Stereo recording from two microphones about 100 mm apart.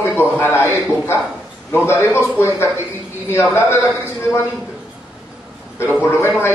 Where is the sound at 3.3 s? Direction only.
25° left (ahead or behind).